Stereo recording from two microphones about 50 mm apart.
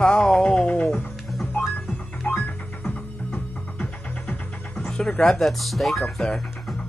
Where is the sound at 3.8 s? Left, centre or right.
Left.